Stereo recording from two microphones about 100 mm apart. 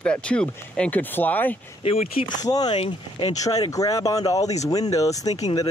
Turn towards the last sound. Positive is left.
turn(degrees=35)  # may be behind; listen again after turning